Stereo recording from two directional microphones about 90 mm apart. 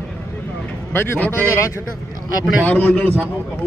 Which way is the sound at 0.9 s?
25° left (ahead or behind).